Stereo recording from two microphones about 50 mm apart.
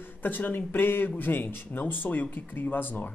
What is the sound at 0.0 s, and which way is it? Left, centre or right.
Speech, left.